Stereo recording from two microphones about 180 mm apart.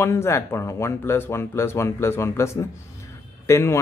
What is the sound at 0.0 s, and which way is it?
Speech, 15° left (ahead or behind).